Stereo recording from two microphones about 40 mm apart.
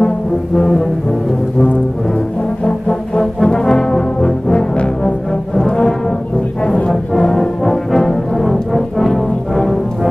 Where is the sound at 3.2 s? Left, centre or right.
Centre.